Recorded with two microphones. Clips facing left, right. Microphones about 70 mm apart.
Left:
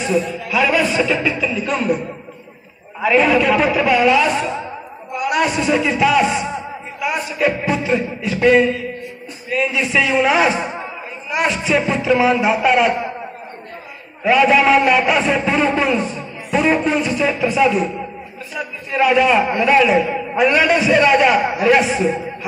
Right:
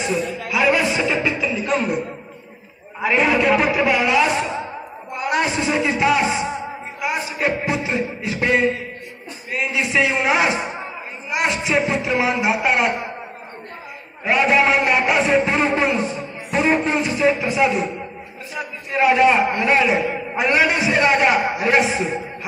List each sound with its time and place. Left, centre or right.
0.5 s a man's voice: centre
3.0 s a man's voice: centre
5.1 s a man's voice: right
14.4 s a man's voice: centre
19.0 s a man's voice: right